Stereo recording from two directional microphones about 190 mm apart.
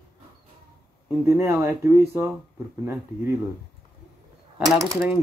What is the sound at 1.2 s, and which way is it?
Speech, 15° right (ahead or behind).